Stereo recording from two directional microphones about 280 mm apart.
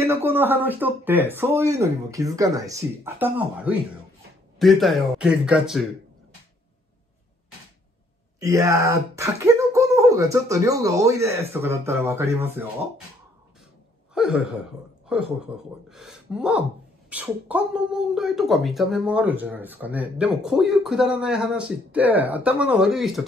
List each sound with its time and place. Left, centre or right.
0.0 s speech: centre
8.4 s speech: centre
14.1 s a sound: centre
15.0 s speech: centre